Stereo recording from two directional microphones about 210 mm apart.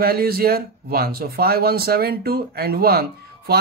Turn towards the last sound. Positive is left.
turn(degrees=-45)  # may be behind; listen again after turning